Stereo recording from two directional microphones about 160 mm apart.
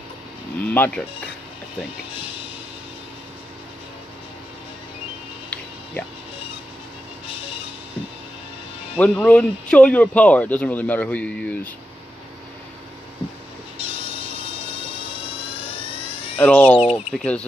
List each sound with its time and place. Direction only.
0.6 s speech: 10° left (ahead or behind)
8.9 s speech: 10° left (ahead or behind)
13.7 s fire alarm: 35° left (ahead or behind)
16.3 s speech: 10° left (ahead or behind)